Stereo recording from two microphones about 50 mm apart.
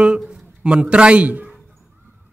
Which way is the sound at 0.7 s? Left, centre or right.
Right.